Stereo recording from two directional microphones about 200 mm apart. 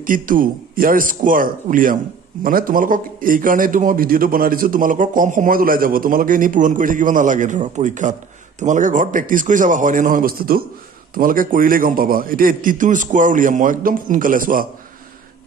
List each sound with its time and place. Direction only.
0.0 s a man's voice: 45° right (ahead or behind)